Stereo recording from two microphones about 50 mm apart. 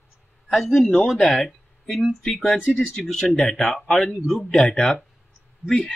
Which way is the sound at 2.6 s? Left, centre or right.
Centre.